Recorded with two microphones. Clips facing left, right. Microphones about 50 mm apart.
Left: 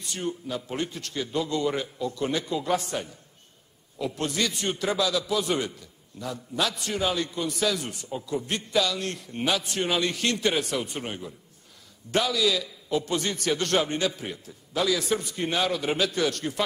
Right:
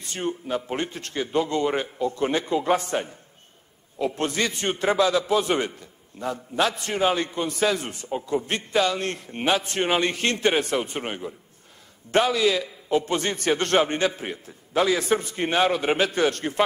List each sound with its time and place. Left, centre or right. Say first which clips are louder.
0.0 s a man's voice: right 3 dB; right